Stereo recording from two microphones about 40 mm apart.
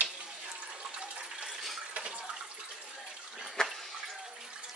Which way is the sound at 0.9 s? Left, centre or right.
Right.